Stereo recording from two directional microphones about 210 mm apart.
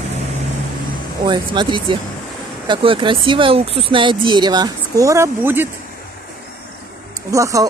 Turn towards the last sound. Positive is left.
turn(degrees=-15)  # may be behind; listen again after turning